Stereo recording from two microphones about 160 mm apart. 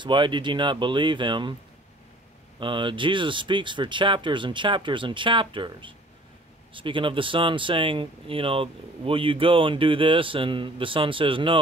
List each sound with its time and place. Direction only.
0.0 s speech: 30° right (ahead or behind)
2.6 s speech: 30° right (ahead or behind)